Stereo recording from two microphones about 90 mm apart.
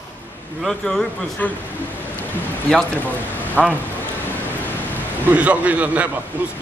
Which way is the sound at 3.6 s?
15° left (ahead or behind).